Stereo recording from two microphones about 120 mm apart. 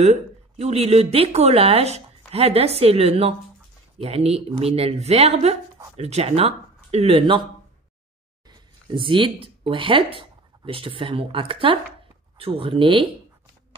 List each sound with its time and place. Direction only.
0.0 s a woman's voice: 65° right (ahead or behind)
8.5 s speech: 45° right (ahead or behind)